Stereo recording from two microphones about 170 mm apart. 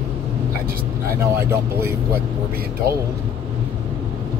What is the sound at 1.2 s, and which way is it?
Speech, 15° right (ahead or behind).